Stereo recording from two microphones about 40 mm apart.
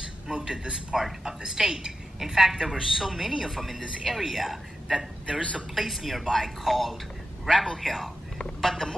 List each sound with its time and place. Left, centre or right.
0.3 s a man's voice: centre
7.4 s a man's voice: centre
7.8 s speech: centre